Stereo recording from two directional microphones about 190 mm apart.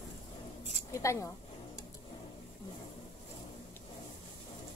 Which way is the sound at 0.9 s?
15° left (ahead or behind).